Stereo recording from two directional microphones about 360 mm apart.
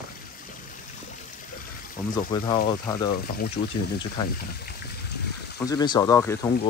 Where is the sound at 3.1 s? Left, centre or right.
Left.